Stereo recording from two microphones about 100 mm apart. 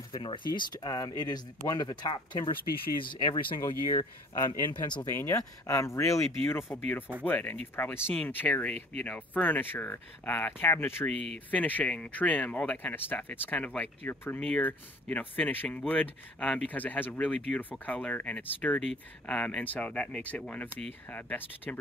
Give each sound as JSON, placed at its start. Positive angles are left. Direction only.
{"t": 0.2, "sound": "speech", "side_deg": 55}
{"t": 3.9, "sound": "speech", "side_deg": 45}
{"t": 5.0, "sound": "speech", "side_deg": 25}